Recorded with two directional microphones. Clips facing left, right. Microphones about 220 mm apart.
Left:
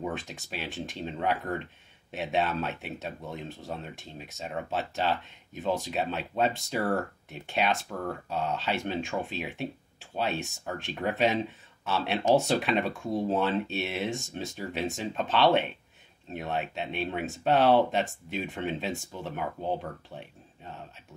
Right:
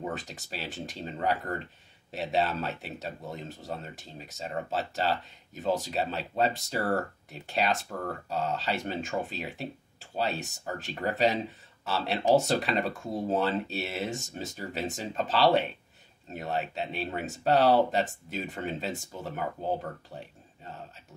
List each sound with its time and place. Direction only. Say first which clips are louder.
0.0 s speech: left 1 dB; centre (ahead or behind)